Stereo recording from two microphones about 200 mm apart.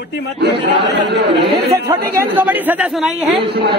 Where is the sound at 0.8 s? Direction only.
60° right (ahead or behind).